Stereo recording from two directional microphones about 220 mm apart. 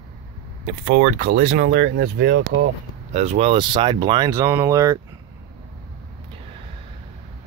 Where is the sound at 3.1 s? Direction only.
30° right (ahead or behind).